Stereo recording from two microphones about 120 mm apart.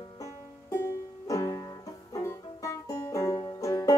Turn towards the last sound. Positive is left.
turn(degrees=25)  # may be behind; listen again after turning